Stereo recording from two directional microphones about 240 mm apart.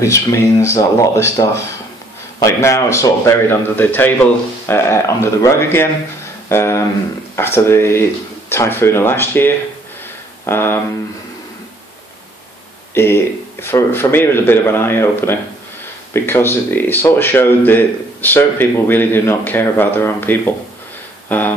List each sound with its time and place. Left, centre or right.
0.0 s speech: centre
12.9 s speech: centre